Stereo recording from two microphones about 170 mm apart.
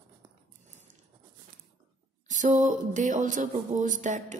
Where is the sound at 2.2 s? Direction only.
45° right (ahead or behind).